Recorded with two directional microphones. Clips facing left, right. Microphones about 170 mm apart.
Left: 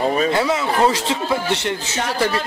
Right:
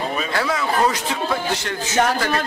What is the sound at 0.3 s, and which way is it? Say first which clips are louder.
A man's voice: left 3 dB; 20° left (ahead or behind).